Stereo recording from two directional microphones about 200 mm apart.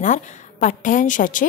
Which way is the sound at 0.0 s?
40° left (ahead or behind).